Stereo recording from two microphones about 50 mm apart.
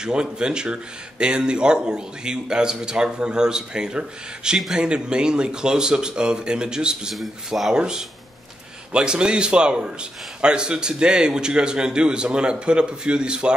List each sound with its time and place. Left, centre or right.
0.0 s a man's voice: centre
7.2 s a man's voice: centre
7.7 s a man's voice: centre